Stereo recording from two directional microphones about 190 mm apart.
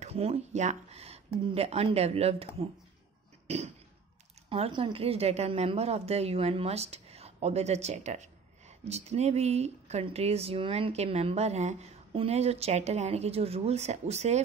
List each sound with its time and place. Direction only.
0.0 s a woman's voice: 35° right (ahead or behind)
3.4 s a sound: 35° right (ahead or behind)
4.5 s a woman's voice: 30° right (ahead or behind)